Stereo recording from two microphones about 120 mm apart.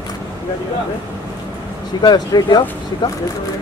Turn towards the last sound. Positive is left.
turn(degrees=35)  # may be behind; listen again after turning